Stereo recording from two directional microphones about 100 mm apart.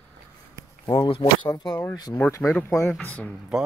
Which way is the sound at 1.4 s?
45° left (ahead or behind).